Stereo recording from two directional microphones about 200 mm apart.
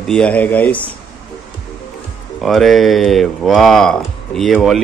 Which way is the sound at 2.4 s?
Centre (ahead or behind).